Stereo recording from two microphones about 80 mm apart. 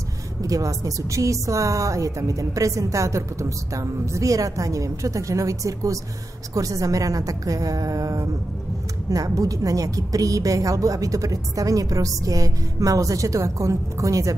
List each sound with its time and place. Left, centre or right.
0.4 s a woman's voice: right